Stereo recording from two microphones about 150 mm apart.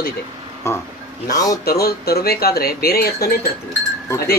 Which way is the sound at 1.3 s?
25° left (ahead or behind).